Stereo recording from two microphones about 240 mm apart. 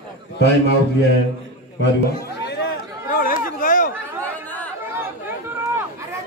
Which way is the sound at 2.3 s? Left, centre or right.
Left.